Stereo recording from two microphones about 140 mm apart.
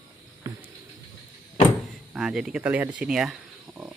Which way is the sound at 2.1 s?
5° right (ahead or behind).